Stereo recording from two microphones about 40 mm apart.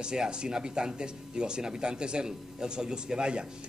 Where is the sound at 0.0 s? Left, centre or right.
Centre.